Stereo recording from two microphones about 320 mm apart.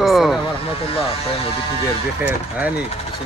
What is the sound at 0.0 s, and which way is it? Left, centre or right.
Music, centre.